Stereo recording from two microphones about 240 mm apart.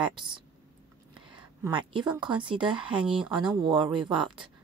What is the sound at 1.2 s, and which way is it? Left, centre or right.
A woman's voice, right.